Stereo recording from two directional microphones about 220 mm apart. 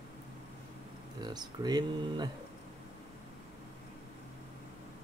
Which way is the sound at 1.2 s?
20° right (ahead or behind).